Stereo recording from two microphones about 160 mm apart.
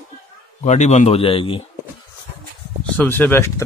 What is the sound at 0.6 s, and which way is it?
A man's voice, 45° left (ahead or behind).